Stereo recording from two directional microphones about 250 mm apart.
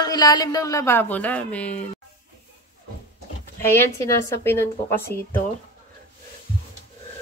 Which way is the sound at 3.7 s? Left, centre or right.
Centre.